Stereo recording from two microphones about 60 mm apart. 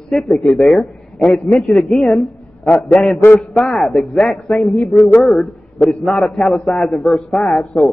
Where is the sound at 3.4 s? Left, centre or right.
Centre.